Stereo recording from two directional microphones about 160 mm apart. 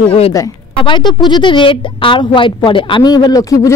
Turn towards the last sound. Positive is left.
turn(degrees=20)  # may be behind; listen again after turning